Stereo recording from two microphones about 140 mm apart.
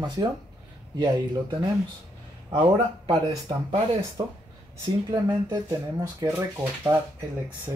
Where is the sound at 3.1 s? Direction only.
40° right (ahead or behind); by 6.3 s 25° right (ahead or behind).